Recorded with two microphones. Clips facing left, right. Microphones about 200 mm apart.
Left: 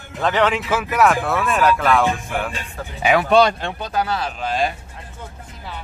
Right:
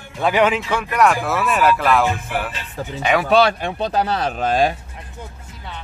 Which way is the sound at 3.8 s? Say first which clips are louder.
Right 3 dB; 30° right (ahead or behind).